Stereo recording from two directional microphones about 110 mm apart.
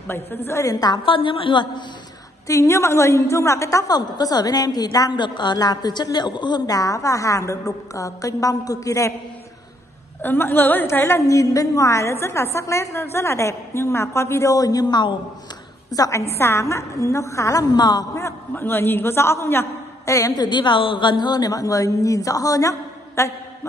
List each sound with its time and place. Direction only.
0.1 s a woman's voice: 20° left (ahead or behind); by 1.7 s 50° left (ahead or behind)
2.4 s a woman's voice: 30° left (ahead or behind)
10.2 s a woman's voice: 20° left (ahead or behind); by 15.1 s 40° left (ahead or behind)
15.9 s a woman's voice: 30° left (ahead or behind)
18.1 s a woman's voice: 20° left (ahead or behind)